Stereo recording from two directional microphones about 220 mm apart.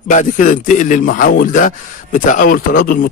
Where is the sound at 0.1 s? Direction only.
35° left (ahead or behind).